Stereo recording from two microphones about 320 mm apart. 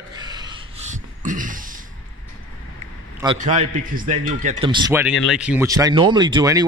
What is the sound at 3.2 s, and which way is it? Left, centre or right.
A man's voice, right.